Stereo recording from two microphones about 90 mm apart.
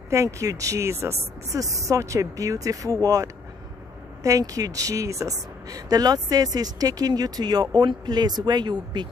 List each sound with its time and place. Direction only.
0.1 s speech: 35° right (ahead or behind); by 9.0 s 55° right (ahead or behind)